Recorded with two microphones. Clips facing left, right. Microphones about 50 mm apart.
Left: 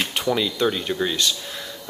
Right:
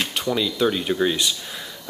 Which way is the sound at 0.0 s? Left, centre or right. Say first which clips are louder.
Left 1 dB; centre.